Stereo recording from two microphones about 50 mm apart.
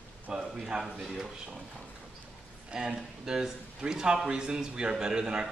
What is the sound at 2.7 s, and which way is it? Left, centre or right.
Speech, centre.